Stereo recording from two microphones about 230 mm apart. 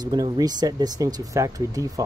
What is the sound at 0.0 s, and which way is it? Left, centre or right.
Speech, centre.